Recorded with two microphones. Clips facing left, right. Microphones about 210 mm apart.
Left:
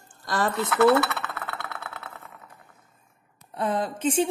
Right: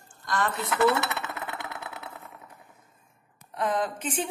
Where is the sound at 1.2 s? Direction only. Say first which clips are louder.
Even; 15° right (ahead or behind).